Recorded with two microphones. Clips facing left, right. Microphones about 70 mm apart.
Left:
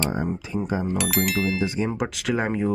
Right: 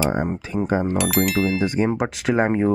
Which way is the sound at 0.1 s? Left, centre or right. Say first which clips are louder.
Right 3 dB; right.